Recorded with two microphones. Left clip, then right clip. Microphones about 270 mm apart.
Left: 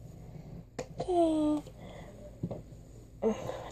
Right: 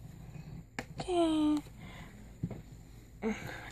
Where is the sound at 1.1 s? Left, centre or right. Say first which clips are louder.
Left 2 dB; right.